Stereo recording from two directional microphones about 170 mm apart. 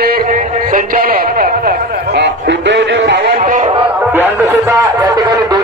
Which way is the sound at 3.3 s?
45° right (ahead or behind).